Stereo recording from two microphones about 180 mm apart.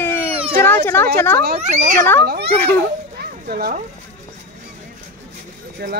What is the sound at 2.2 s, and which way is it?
Speech, 60° right (ahead or behind).